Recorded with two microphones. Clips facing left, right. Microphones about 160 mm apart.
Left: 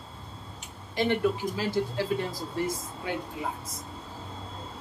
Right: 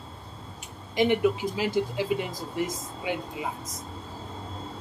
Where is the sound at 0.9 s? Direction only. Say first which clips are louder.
Right 3 dB; 15° right (ahead or behind).